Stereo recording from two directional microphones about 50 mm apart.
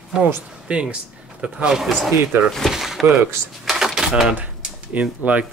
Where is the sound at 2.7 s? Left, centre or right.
Centre.